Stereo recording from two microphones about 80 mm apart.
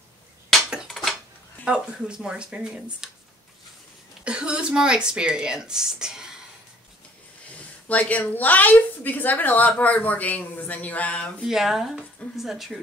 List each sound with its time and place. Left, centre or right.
0.8 s cutlery: centre
1.6 s speech: centre
4.2 s speech: centre
7.4 s a woman's voice: centre
11.4 s speech: centre